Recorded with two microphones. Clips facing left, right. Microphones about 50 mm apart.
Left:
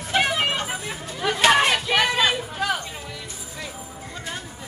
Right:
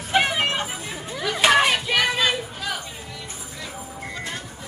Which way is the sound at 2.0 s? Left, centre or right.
Centre.